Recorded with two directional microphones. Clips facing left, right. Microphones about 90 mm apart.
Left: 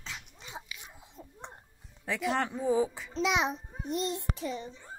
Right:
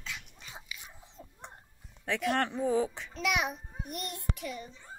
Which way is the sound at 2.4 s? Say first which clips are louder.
Left 1 dB; 10° left (ahead or behind).